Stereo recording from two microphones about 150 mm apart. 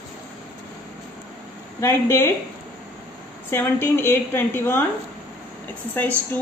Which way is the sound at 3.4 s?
15° left (ahead or behind).